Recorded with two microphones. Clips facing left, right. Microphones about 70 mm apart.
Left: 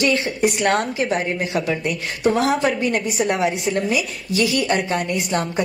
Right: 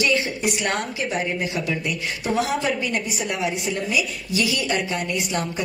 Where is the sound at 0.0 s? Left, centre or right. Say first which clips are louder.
Left 3 dB; left.